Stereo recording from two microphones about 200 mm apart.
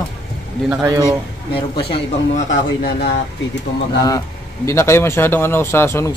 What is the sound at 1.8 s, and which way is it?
A man's voice, 30° left (ahead or behind).